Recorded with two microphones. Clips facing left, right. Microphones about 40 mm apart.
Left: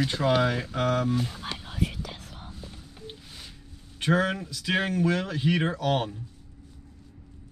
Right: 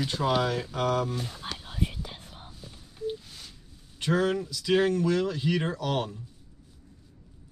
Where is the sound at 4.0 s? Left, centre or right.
Left.